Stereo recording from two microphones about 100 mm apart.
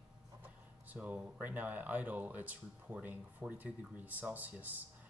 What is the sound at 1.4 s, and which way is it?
Speech, 20° right (ahead or behind).